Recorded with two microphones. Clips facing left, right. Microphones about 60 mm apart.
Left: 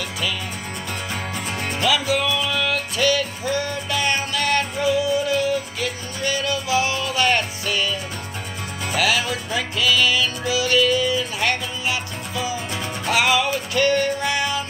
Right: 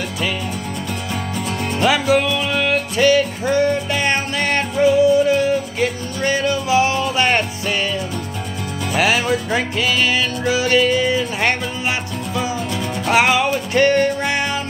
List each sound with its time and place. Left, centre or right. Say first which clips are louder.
1.8 s music: right 5 dB; right
8.9 s music: right 4 dB; right